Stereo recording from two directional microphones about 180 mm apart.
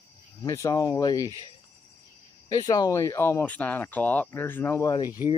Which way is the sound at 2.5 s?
20° left (ahead or behind).